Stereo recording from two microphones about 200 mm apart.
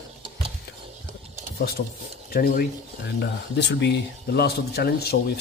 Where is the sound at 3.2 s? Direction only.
60° left (ahead or behind).